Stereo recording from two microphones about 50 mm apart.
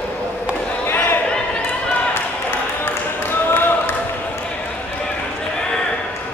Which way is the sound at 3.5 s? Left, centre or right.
Left.